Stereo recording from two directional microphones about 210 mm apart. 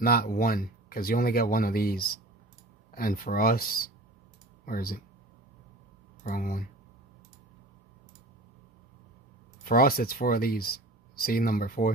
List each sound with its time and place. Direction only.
0.0 s speech: 45° left (ahead or behind)
6.2 s speech: 40° left (ahead or behind)
9.7 s speech: 45° left (ahead or behind)